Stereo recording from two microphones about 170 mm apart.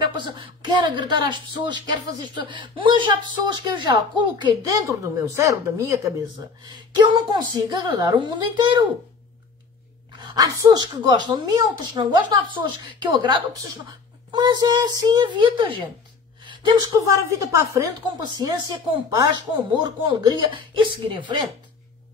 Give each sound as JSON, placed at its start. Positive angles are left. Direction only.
{"t": 0.0, "sound": "a woman's voice", "side_deg": -25}
{"t": 10.2, "sound": "speech", "side_deg": -20}
{"t": 19.1, "sound": "speech", "side_deg": -25}